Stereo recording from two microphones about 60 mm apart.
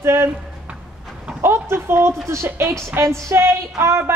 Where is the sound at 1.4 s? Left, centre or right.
Right.